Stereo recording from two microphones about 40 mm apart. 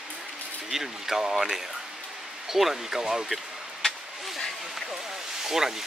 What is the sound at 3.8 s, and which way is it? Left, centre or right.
Vehicle, centre.